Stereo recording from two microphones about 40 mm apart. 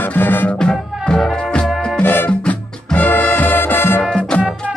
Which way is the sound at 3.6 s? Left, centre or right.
Left.